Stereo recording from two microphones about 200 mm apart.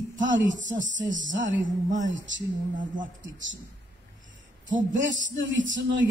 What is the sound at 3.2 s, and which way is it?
Speech, 70° right (ahead or behind).